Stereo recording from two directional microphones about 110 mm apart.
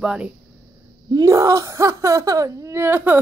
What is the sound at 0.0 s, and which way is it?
Speech, 5° right (ahead or behind).